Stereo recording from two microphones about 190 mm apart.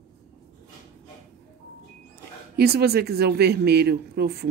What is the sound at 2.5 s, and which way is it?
Speech, 55° right (ahead or behind).